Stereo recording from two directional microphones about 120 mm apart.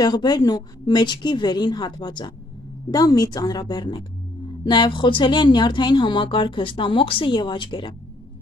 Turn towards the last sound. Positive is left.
turn(degrees=40)  # may be behind; listen again after turning